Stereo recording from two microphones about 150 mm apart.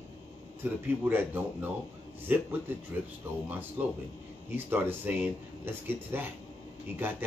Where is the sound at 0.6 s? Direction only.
10° right (ahead or behind).